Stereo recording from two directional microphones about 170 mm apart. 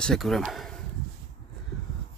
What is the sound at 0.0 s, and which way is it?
Speech, centre (ahead or behind).